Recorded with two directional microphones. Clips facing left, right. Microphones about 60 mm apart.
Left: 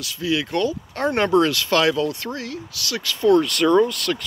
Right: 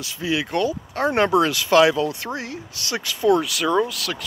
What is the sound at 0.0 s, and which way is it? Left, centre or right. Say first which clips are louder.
Speech: left 1 dB; centre.